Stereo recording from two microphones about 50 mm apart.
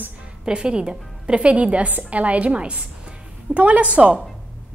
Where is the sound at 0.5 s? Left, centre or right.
Centre.